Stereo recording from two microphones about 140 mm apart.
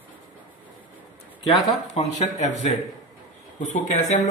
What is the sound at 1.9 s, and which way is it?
Speech, 50° left (ahead or behind).